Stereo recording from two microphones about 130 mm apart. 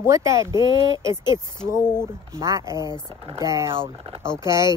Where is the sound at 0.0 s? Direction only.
25° right (ahead or behind).